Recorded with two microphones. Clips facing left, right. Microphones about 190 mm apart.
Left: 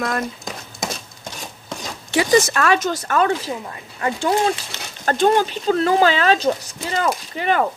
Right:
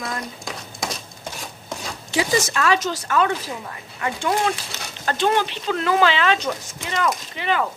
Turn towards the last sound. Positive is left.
turn(degrees=45)  # may be behind; listen again after turning